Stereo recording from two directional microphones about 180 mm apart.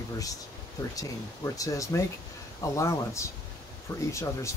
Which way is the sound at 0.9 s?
20° left (ahead or behind).